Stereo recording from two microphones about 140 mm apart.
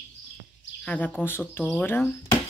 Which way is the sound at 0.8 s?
10° left (ahead or behind).